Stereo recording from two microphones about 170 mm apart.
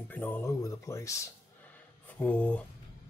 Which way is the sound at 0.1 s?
10° left (ahead or behind).